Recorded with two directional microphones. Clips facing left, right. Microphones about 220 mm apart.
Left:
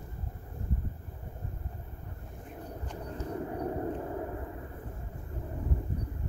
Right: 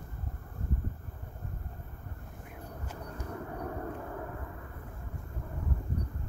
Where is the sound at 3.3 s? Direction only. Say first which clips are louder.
Left 5 dB; 25° left (ahead or behind).